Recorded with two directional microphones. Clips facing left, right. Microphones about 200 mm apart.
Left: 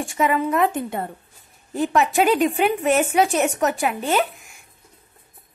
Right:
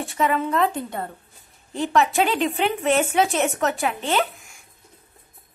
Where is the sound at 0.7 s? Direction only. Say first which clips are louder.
Left 3 dB; 20° left (ahead or behind).